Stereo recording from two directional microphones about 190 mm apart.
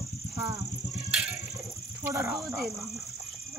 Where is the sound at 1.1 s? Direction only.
5° right (ahead or behind).